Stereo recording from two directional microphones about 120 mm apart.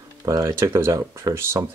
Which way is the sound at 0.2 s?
30° right (ahead or behind).